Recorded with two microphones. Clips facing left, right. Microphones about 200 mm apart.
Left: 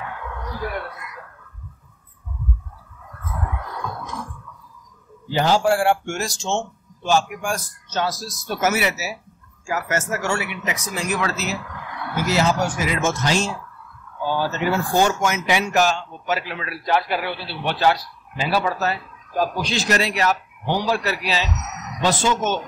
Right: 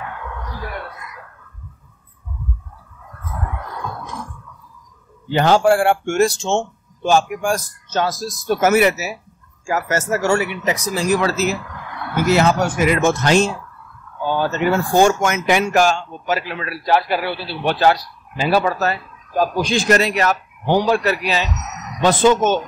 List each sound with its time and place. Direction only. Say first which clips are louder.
5.3 s speech: right 4 dB; 60° right (ahead or behind)
9.7 s speech: right 4 dB; 40° right (ahead or behind)
12.3 s speech: right 4 dB; 60° right (ahead or behind)